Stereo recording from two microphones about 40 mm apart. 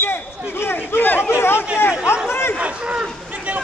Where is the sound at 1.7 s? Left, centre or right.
Left.